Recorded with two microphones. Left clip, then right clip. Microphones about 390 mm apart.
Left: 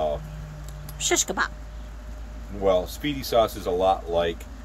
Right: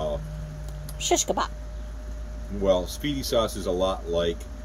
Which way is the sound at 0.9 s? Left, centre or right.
Centre.